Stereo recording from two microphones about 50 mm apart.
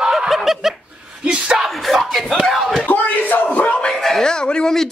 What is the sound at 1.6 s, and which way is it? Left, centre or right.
Speech, centre.